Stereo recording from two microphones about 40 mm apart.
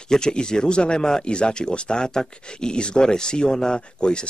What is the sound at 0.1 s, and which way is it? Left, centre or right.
Speech, left.